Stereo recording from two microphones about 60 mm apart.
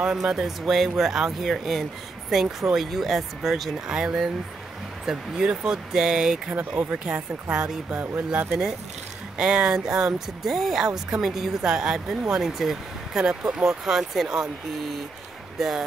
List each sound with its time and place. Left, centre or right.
0.0 s speech: centre
7.9 s speech: right
8.5 s speech: centre
15.5 s speech: centre